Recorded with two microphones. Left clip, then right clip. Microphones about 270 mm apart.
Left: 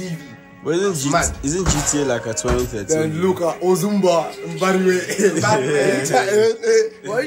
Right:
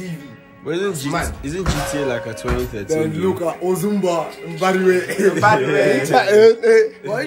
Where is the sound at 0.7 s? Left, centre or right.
Centre.